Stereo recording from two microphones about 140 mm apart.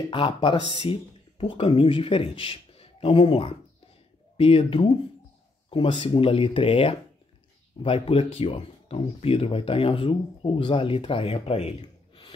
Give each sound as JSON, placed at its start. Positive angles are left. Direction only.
{"t": 0.1, "sound": "speech", "side_deg": 35}